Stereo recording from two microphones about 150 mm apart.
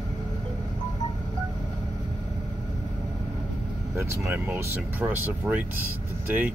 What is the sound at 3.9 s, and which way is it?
Speech, 15° right (ahead or behind).